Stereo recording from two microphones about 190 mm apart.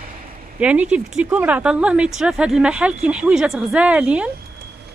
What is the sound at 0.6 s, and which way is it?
A woman's voice, 5° right (ahead or behind).